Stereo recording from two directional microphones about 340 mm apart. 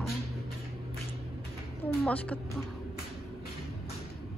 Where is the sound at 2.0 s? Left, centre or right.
Centre.